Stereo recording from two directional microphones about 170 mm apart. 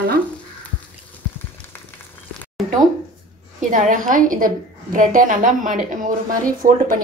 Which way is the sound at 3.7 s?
50° right (ahead or behind).